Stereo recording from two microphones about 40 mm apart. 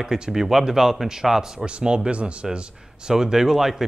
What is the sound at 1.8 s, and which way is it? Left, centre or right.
Speech, right.